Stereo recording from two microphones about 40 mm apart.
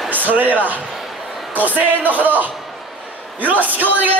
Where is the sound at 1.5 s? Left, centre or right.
Right.